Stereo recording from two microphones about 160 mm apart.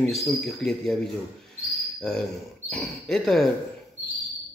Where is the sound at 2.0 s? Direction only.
5° left (ahead or behind).